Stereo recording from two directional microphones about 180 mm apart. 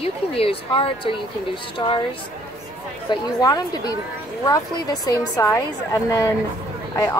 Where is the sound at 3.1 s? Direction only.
20° left (ahead or behind).